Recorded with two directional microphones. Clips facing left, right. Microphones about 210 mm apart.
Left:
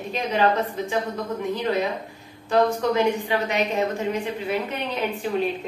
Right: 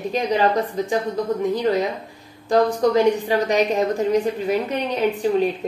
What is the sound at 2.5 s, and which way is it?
A woman's voice, 40° right (ahead or behind).